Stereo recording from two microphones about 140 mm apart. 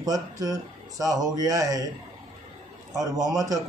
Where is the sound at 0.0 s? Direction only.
25° right (ahead or behind).